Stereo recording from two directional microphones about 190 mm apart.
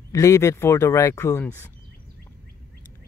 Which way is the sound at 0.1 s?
15° left (ahead or behind).